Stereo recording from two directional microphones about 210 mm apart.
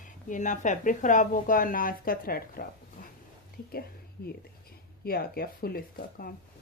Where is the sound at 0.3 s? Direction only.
35° left (ahead or behind).